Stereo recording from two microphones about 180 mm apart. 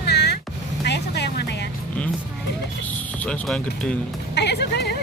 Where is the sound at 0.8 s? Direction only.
70° left (ahead or behind).